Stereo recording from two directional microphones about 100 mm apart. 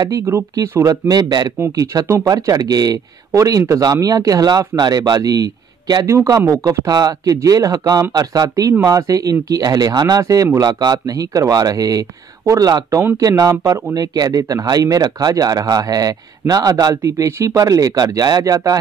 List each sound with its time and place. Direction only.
0.2 s speech: 25° right (ahead or behind)